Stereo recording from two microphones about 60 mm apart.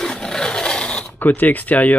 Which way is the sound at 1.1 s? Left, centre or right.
Left.